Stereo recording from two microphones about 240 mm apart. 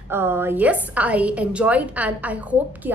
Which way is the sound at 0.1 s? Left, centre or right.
Centre.